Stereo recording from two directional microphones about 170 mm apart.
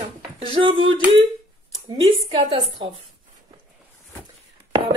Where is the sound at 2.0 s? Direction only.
30° right (ahead or behind).